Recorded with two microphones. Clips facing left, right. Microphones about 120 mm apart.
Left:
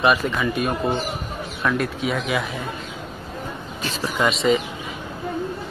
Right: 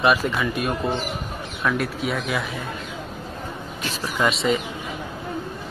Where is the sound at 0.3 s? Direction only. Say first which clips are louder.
Left 1 dB; centre (ahead or behind).